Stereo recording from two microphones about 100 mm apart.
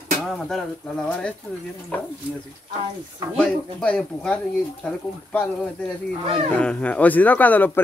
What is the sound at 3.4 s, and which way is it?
Speech, 10° left (ahead or behind).